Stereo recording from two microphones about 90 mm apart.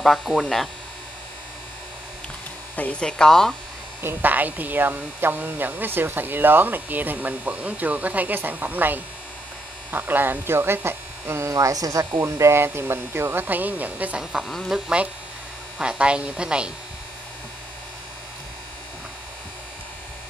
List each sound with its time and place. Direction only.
0.0 s speech: centre (ahead or behind)
2.7 s speech: 15° left (ahead or behind)
4.0 s speech: 25° right (ahead or behind)
14.3 s speech: centre (ahead or behind)
15.8 s speech: 10° right (ahead or behind)